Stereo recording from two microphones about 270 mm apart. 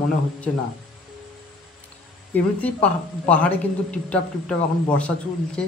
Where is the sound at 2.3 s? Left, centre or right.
Centre.